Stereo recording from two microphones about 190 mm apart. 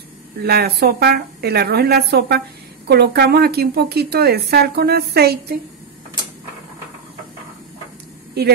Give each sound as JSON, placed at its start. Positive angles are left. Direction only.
{"t": 0.4, "sound": "a woman's voice", "side_deg": -55}
{"t": 8.4, "sound": "speech", "side_deg": -60}